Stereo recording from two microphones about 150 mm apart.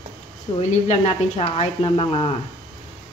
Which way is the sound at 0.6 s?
45° left (ahead or behind).